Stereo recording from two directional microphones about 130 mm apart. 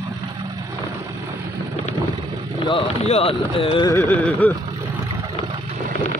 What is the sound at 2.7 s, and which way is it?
Speech, 45° left (ahead or behind).